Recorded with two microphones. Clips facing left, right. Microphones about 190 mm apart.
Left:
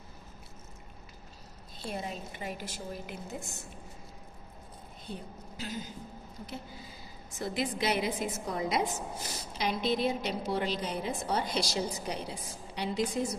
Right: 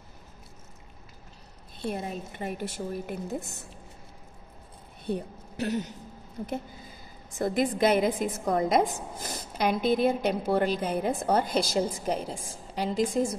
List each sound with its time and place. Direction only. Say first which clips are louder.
1.8 s a woman's voice: right 5 dB; 55° right (ahead or behind)
5.0 s speech: right 11 dB; 65° right (ahead or behind)
6.4 s a woman's voice: right 9 dB; 55° right (ahead or behind)
8.8 s a woman's voice: right 2 dB; 15° right (ahead or behind)
9.2 s a woman's voice: right 8 dB; 55° right (ahead or behind)